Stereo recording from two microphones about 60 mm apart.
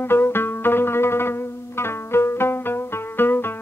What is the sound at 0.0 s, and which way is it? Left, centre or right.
Music, left.